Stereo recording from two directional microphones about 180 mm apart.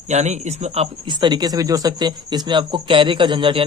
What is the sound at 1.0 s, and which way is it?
Speech, 25° right (ahead or behind).